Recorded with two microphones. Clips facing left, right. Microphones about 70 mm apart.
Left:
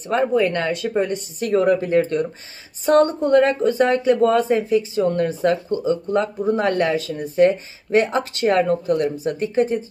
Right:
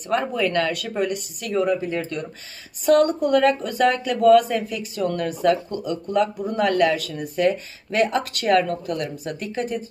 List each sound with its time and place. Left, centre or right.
0.3 s a woman's voice: left